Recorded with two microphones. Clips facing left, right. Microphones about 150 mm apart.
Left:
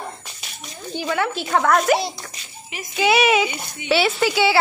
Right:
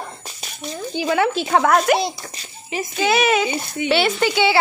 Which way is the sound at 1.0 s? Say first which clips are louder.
Right 3 dB; 15° right (ahead or behind).